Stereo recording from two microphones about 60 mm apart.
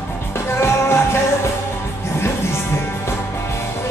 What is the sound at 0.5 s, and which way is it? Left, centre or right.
Music, left.